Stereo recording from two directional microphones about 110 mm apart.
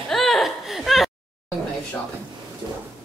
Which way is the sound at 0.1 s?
Centre (ahead or behind).